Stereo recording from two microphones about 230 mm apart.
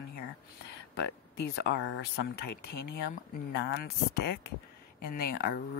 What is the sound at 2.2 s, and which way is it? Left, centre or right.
Speech, left.